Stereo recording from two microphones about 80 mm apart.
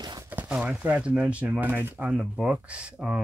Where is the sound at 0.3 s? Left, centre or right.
Right.